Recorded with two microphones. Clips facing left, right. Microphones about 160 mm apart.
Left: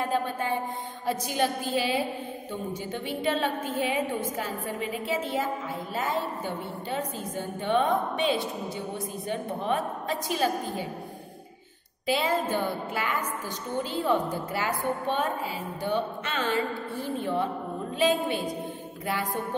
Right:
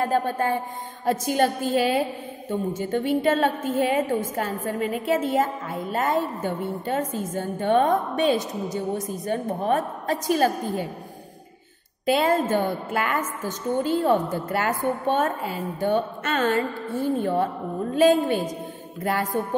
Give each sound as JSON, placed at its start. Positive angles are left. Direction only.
{"t": 0.0, "sound": "a woman's voice", "side_deg": -45}
{"t": 12.1, "sound": "a woman's voice", "side_deg": -50}